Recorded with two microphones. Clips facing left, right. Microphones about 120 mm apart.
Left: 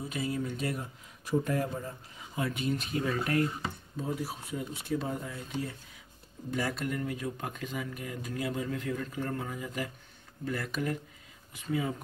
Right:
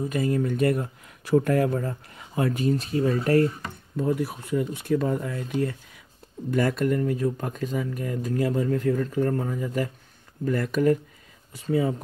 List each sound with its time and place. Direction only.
0.1 s speech: 50° right (ahead or behind)
3.9 s speech: 60° right (ahead or behind)
6.5 s speech: 50° right (ahead or behind)
11.5 s speech: 35° right (ahead or behind)